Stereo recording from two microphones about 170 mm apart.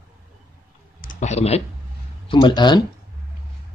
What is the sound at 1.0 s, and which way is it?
Clicking, 50° left (ahead or behind).